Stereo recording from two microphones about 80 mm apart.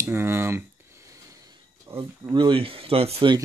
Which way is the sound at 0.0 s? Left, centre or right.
Right.